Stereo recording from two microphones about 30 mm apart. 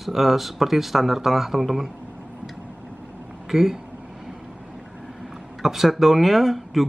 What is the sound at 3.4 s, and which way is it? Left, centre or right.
Speech, centre.